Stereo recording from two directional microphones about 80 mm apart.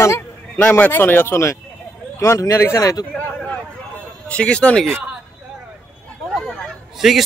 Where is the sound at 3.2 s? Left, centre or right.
Centre.